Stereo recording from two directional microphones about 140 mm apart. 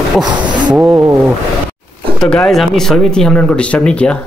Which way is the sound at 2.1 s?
5° left (ahead or behind).